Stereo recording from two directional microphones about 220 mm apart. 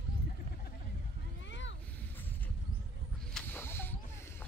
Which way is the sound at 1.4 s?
55° left (ahead or behind).